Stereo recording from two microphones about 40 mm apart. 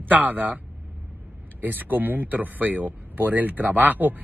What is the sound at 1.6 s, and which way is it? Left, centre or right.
Speech, right.